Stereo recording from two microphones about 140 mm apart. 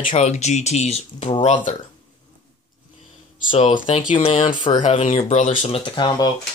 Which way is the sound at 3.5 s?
40° left (ahead or behind).